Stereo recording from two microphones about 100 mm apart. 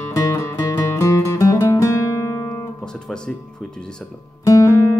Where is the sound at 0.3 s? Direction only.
30° left (ahead or behind).